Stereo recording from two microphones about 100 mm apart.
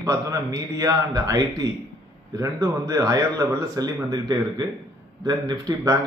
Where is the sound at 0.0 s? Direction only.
35° right (ahead or behind).